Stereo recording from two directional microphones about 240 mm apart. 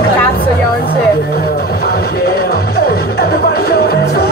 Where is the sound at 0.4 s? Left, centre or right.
Left.